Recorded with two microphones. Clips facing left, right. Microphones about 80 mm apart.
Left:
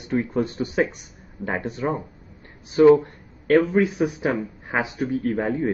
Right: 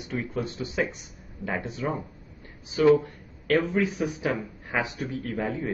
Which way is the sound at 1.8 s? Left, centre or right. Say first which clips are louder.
Left 5 dB; left.